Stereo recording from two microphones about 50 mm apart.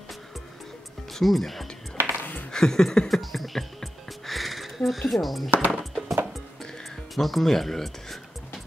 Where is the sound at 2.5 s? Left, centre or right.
Centre.